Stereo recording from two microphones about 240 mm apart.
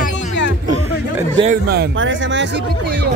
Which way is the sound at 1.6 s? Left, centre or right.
Right.